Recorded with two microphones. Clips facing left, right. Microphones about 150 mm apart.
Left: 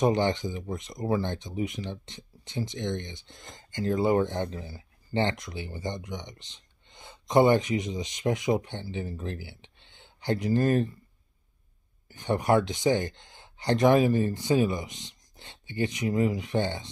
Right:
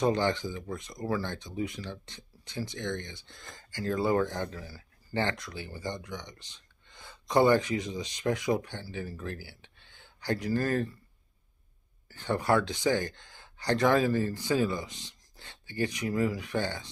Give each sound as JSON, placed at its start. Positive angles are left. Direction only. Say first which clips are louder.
{"t": 0.0, "sound": "speech", "louder": "left 3 dB", "side_deg": 20}
{"t": 12.1, "sound": "speech", "louder": "left 3 dB", "side_deg": 20}